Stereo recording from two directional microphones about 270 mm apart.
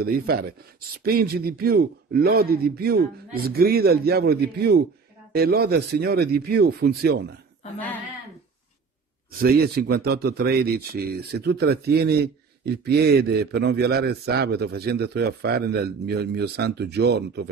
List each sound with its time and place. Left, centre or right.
0.0 s speech: right
9.4 s speech: right